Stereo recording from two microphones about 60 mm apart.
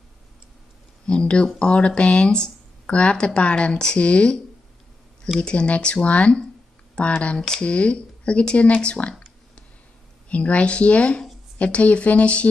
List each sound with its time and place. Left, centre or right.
1.0 s speech: centre
5.4 s speech: centre
10.3 s speech: left